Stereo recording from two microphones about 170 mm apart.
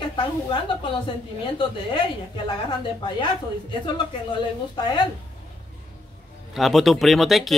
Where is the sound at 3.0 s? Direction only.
30° left (ahead or behind).